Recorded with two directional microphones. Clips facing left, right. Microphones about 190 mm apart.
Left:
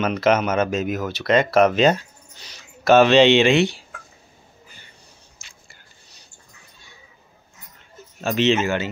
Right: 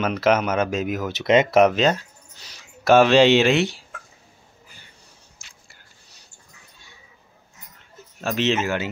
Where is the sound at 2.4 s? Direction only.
10° right (ahead or behind).